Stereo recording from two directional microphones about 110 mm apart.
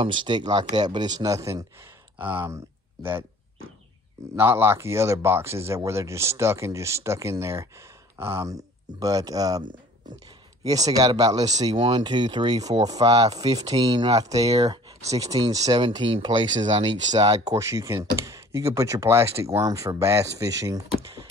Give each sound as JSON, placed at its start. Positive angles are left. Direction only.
{"t": 0.0, "sound": "speech", "side_deg": -45}
{"t": 2.1, "sound": "speech", "side_deg": -15}
{"t": 4.4, "sound": "speech", "side_deg": -20}
{"t": 17.6, "sound": "speech", "side_deg": -25}